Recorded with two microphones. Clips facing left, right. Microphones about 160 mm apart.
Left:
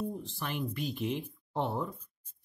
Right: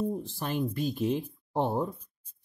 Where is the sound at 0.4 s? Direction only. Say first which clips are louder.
Right 5 dB; 40° right (ahead or behind).